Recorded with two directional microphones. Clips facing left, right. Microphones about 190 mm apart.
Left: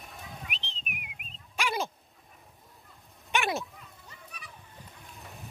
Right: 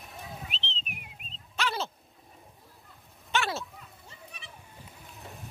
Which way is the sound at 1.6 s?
10° left (ahead or behind).